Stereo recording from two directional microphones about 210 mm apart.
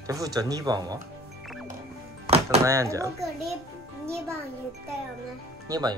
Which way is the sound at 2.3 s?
30° right (ahead or behind).